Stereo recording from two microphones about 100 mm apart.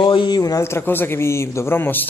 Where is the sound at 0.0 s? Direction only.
55° left (ahead or behind).